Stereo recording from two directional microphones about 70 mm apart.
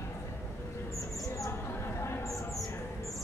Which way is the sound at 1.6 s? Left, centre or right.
Left.